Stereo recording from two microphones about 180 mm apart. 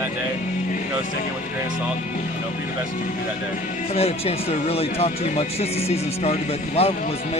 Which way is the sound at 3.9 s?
35° left (ahead or behind).